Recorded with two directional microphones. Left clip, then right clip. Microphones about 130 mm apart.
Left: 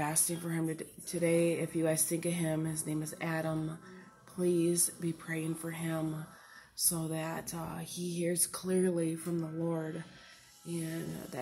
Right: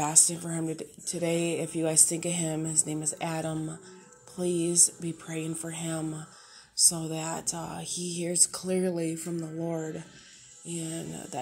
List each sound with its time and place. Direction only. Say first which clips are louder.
0.0 s speech: right 8 dB; 30° right (ahead or behind)